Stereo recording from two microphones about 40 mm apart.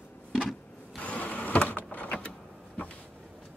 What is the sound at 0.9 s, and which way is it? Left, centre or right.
Power windows, left.